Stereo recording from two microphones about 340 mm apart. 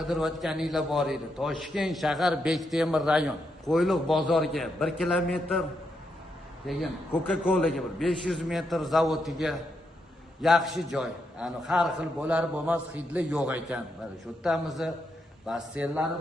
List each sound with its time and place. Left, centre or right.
0.0 s a man's voice: centre
6.6 s a man's voice: centre